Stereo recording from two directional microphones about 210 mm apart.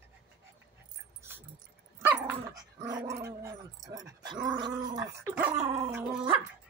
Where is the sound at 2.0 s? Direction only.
10° right (ahead or behind).